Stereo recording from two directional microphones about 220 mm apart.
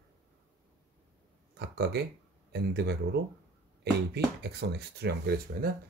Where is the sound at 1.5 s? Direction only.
50° right (ahead or behind).